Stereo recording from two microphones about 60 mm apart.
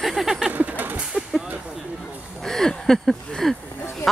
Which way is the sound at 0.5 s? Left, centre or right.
Right.